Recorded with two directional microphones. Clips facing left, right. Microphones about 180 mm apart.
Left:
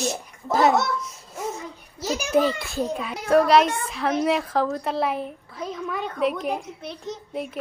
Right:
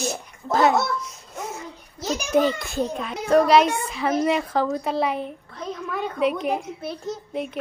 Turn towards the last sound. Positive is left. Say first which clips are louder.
# right 2 dB
turn(degrees=0)  # may be behind; listen again after turning